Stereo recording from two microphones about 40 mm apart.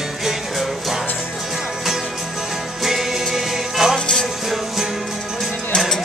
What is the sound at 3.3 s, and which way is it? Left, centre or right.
Music, centre.